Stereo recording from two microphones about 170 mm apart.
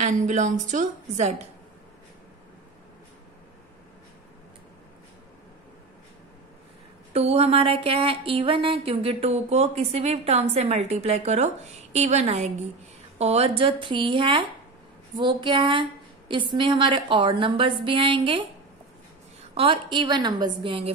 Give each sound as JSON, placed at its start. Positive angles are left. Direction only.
{"t": 0.0, "sound": "a woman's voice", "side_deg": -45}
{"t": 7.2, "sound": "a sound", "side_deg": -35}
{"t": 15.1, "sound": "a woman's voice", "side_deg": -30}
{"t": 19.5, "sound": "a woman's voice", "side_deg": -30}